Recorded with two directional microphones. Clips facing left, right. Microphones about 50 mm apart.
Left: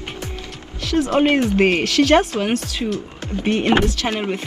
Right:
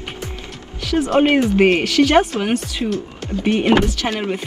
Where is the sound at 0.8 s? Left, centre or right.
Centre.